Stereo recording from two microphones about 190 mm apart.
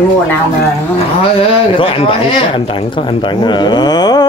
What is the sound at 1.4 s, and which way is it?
Speech, 30° left (ahead or behind).